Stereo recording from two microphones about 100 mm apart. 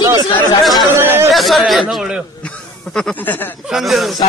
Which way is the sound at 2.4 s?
10° left (ahead or behind).